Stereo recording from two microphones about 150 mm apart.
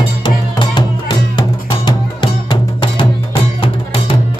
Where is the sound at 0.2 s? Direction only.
30° left (ahead or behind).